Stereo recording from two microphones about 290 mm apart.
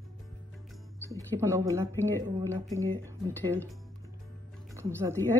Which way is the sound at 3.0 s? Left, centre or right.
Centre.